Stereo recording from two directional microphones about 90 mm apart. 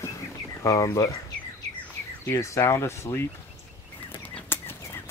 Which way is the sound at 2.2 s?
30° left (ahead or behind).